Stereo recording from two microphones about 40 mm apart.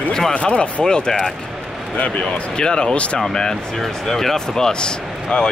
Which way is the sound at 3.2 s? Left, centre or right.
Centre.